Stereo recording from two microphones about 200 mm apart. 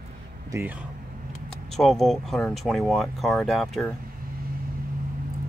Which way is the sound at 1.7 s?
Centre (ahead or behind).